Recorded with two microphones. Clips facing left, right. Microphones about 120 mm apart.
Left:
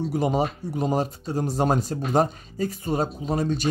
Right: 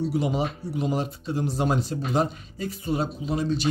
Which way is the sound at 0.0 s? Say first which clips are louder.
Left 2 dB; 45° left (ahead or behind).